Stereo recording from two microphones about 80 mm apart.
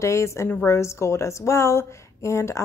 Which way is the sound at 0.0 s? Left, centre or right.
Left.